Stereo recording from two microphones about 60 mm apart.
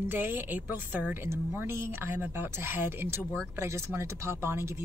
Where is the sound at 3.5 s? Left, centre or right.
Right.